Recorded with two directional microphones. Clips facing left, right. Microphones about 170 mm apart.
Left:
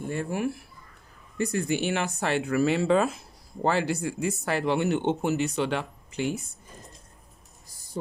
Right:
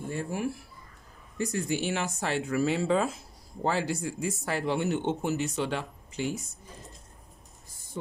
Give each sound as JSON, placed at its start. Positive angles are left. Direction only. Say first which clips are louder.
{"t": 0.1, "sound": "speech", "louder": "left 3 dB", "side_deg": 65}